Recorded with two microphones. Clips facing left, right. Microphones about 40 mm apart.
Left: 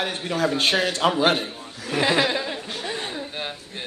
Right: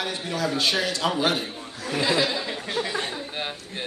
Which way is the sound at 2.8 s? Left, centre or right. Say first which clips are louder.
Right 4 dB; right.